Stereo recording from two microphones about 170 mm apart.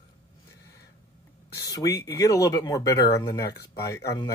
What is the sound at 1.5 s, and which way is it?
Speech, 20° left (ahead or behind).